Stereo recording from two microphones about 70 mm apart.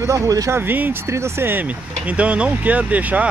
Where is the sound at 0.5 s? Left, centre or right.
Right.